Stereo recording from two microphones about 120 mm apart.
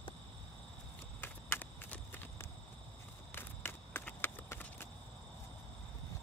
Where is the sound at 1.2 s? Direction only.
15° left (ahead or behind).